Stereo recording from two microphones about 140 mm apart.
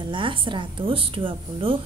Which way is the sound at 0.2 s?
40° right (ahead or behind).